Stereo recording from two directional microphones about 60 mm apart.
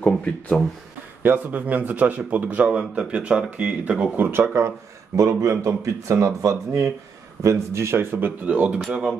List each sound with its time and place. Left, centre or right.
0.0 s speech: centre
1.2 s a man's voice: right
4.3 s speech: right
5.1 s speech: right
8.5 s a man's voice: right